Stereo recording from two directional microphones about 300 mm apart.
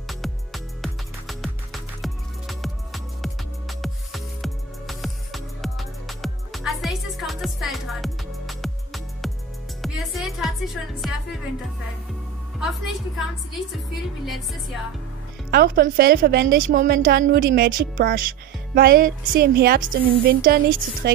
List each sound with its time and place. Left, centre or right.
0.1 s music: centre
14.2 s speech: centre
15.5 s a woman's voice: right